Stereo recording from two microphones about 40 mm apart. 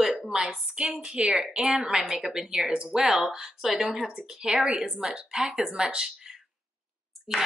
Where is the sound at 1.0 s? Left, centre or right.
Right.